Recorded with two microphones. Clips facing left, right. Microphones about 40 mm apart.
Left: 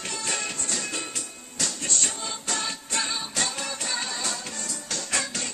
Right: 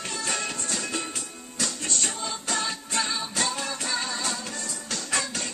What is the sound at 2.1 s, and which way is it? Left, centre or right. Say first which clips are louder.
Music: right 1 dB; centre.